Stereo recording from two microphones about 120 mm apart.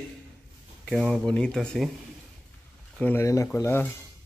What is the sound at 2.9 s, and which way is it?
Speech, 15° left (ahead or behind).